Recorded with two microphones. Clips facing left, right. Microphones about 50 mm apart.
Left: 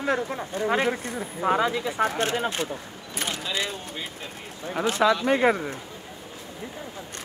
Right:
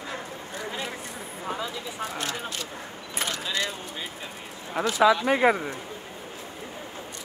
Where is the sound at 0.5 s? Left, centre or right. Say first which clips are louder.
Left 10 dB; left.